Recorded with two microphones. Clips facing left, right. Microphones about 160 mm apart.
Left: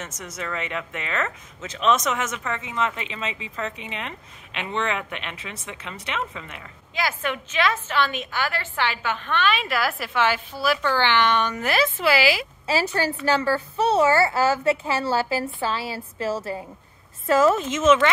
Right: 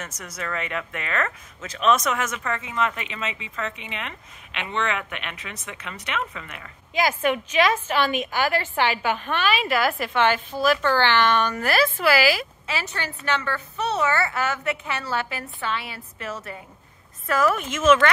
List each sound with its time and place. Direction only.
0.0 s a woman's voice: 25° left (ahead or behind)
6.9 s a woman's voice: 15° right (ahead or behind); by 12.3 s 20° left (ahead or behind)
12.6 s a woman's voice: 35° left (ahead or behind)